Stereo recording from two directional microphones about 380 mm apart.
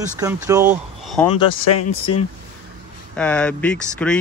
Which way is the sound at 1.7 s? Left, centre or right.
Left.